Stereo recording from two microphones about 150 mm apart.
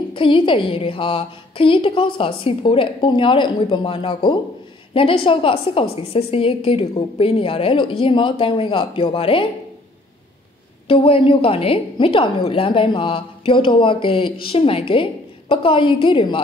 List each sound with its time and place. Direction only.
0.1 s a woman's voice: 35° left (ahead or behind)
10.9 s a woman's voice: 35° left (ahead or behind)